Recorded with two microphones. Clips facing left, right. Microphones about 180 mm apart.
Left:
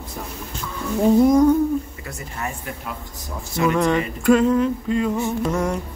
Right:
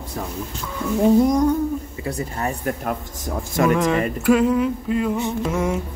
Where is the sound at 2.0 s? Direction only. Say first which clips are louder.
Right 6 dB; 35° right (ahead or behind).